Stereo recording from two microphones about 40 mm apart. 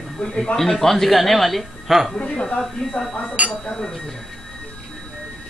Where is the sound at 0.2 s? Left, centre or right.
Centre.